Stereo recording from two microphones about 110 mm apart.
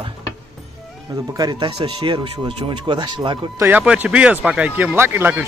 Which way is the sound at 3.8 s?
10° right (ahead or behind).